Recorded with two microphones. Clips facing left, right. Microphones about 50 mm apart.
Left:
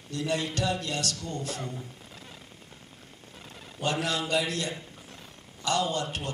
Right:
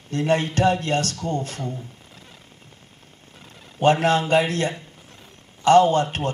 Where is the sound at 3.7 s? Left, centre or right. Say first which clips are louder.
Right 11 dB; right.